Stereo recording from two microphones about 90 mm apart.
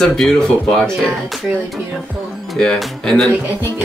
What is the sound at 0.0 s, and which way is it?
Speech, 5° left (ahead or behind).